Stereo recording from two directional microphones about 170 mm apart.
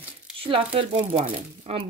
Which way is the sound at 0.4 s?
30° right (ahead or behind).